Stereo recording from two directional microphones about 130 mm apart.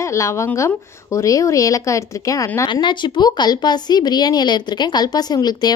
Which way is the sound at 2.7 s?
35° left (ahead or behind).